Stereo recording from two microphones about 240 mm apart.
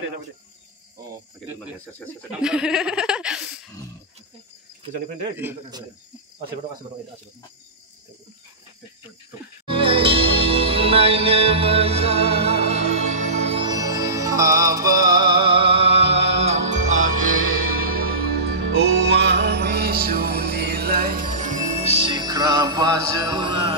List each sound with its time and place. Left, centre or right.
2.4 s speech: centre
5.4 s speech: centre
9.7 s music: right
21.9 s music: centre